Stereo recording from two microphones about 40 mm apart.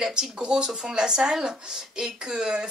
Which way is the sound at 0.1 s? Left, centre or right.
Centre.